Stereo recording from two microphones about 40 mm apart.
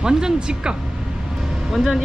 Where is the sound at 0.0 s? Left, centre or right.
Right.